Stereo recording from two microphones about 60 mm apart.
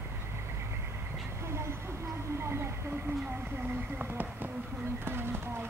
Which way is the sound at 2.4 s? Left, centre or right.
Right.